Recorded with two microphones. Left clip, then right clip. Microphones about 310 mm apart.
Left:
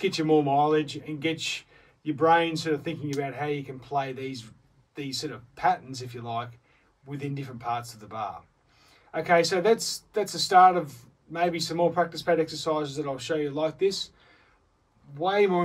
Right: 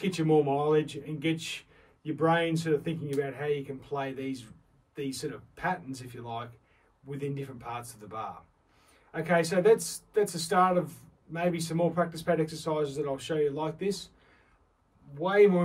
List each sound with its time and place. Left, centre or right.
0.1 s speech: centre